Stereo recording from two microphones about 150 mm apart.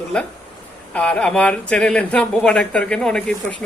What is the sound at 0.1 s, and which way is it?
Speech, 5° left (ahead or behind).